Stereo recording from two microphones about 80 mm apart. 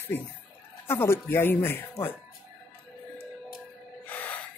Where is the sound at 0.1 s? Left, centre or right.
Left.